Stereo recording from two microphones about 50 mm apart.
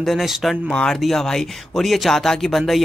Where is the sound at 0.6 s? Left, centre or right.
Centre.